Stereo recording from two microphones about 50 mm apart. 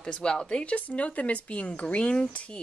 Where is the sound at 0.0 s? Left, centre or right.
Centre.